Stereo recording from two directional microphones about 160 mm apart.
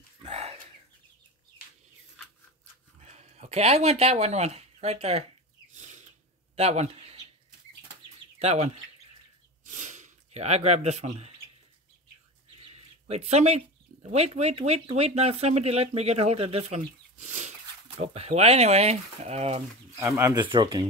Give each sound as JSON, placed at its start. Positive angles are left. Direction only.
{"t": 0.2, "sound": "chicken", "side_deg": -40}
{"t": 3.0, "sound": "speech", "side_deg": -45}
{"t": 5.8, "sound": "a sound", "side_deg": -50}
{"t": 8.4, "sound": "speech", "side_deg": -45}
{"t": 9.7, "sound": "a sound", "side_deg": -50}
{"t": 11.1, "sound": "speech", "side_deg": -40}
{"t": 12.5, "sound": "bird", "side_deg": -35}
{"t": 13.0, "sound": "speech", "side_deg": -45}
{"t": 20.0, "sound": "speech", "side_deg": -15}
{"t": 20.3, "sound": "speech", "side_deg": -30}